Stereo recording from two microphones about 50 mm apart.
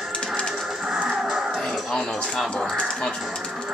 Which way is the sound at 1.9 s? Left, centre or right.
Centre.